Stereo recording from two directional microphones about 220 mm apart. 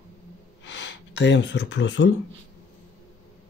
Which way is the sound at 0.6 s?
55° left (ahead or behind).